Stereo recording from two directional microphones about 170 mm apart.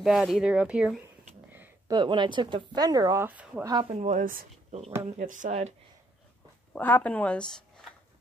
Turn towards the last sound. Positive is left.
turn(degrees=5)  # may be behind; listen again after turning